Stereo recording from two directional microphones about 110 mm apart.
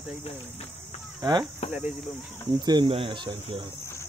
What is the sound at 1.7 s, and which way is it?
Speech, 10° right (ahead or behind).